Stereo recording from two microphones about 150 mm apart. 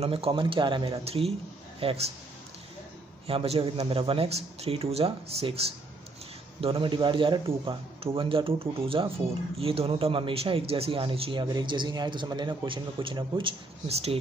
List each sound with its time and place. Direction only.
0.0 s a man's voice: 40° right (ahead or behind)
3.3 s a man's voice: 40° right (ahead or behind)